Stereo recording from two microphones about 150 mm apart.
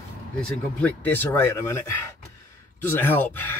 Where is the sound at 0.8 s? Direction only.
10° left (ahead or behind).